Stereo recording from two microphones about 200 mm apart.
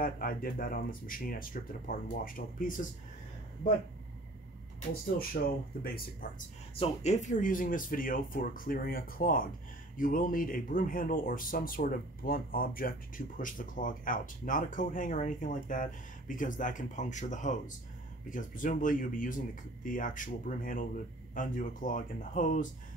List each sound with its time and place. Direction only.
0.0 s a man's voice: 45° left (ahead or behind)
5.3 s a man's voice: 50° left (ahead or behind)
6.7 s a man's voice: 30° left (ahead or behind)